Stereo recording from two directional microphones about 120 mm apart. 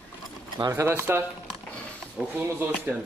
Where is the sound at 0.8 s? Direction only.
20° right (ahead or behind).